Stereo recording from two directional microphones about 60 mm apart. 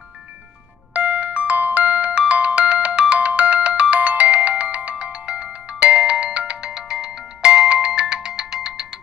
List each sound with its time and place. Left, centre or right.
0.9 s ringtone: right
7.4 s music: centre